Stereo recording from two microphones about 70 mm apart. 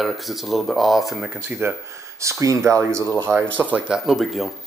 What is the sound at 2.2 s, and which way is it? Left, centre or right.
Speech, right.